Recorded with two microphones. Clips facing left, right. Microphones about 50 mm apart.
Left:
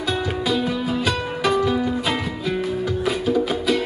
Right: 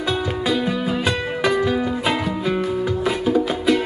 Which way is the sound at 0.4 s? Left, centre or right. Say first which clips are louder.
Right 1 dB; right.